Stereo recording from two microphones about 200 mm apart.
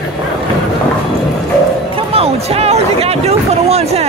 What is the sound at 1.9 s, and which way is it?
Speech, 30° right (ahead or behind).